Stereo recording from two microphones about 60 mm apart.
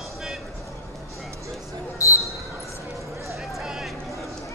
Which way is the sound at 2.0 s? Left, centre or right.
Left.